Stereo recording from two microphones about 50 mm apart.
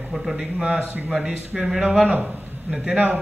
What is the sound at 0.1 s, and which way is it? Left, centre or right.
A man's voice, centre.